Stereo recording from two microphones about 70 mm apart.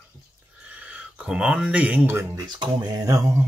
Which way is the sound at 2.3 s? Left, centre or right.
Right.